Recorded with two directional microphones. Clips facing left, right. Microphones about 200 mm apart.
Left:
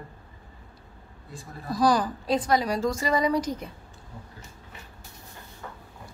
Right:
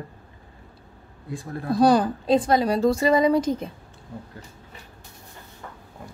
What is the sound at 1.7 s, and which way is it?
A woman's voice, 25° right (ahead or behind).